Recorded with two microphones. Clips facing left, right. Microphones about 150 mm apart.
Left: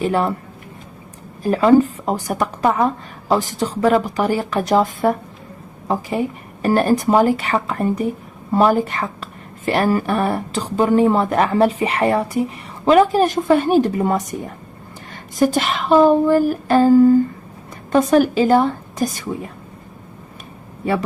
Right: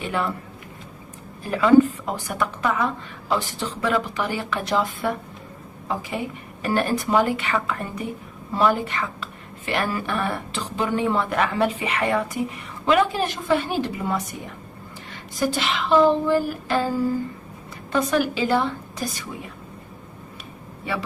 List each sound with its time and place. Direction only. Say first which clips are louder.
0.0 s a woman's voice: left 8 dB; 35° left (ahead or behind)
1.4 s a woman's voice: left 3 dB; 35° left (ahead or behind)
17.9 s speech: left 8 dB; 45° left (ahead or behind)